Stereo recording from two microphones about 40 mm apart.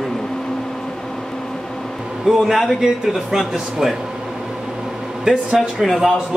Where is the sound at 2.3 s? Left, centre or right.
Centre.